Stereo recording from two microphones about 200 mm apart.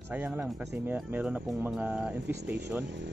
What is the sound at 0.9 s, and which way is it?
Speech, 5° right (ahead or behind).